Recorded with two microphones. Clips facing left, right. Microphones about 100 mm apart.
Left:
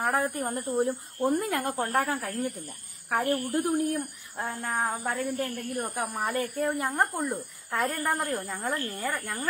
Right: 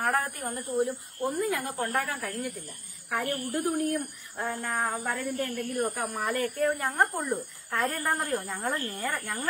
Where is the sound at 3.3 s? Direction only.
20° left (ahead or behind).